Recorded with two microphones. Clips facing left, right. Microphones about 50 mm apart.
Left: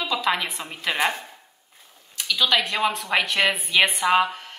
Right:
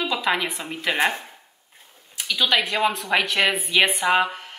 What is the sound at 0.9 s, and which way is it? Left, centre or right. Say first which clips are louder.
Speech: right 2 dB; centre.